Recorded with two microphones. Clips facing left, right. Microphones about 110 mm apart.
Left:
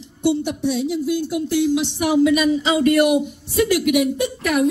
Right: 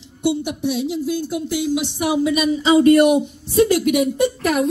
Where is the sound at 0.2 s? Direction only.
5° right (ahead or behind).